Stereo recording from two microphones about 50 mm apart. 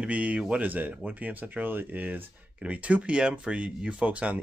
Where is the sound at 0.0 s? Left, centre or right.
Right.